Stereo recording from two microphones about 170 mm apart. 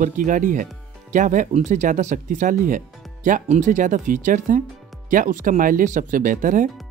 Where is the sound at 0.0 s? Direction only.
50° right (ahead or behind).